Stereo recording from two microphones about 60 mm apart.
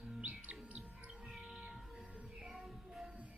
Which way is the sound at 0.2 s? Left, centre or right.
Right.